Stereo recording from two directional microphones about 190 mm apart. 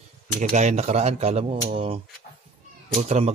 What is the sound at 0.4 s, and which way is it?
Speech, 40° right (ahead or behind).